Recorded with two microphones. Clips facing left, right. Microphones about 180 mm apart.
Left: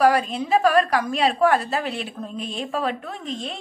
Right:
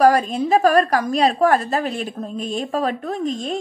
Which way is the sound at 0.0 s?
45° right (ahead or behind).